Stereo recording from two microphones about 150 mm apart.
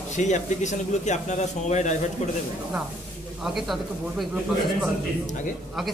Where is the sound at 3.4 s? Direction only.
5° right (ahead or behind).